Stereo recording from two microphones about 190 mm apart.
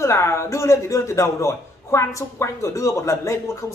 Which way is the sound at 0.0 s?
15° left (ahead or behind).